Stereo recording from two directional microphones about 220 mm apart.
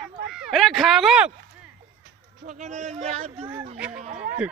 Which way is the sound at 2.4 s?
35° right (ahead or behind).